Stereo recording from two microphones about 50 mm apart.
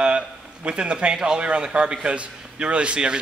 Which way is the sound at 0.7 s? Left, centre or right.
Right.